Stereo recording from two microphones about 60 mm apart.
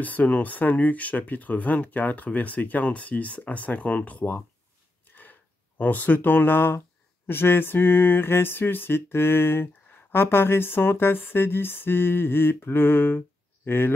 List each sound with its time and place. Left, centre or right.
0.0 s speech: left
5.0 s a sound: left
7.2 s speech: left